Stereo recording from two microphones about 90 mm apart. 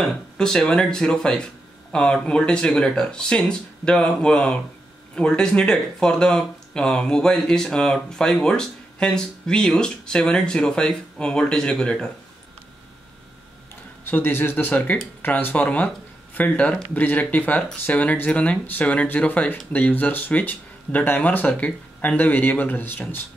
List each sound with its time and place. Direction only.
0.0 s speech: 5° left (ahead or behind)
14.0 s speech: 25° left (ahead or behind)